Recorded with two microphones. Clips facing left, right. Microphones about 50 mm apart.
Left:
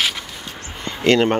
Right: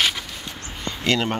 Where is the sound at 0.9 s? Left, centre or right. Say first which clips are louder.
Left 7 dB; left.